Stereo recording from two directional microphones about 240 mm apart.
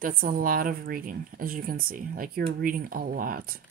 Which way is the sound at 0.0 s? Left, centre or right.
Right.